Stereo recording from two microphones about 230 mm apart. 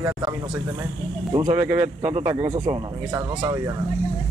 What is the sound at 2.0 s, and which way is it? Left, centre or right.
Speech, right.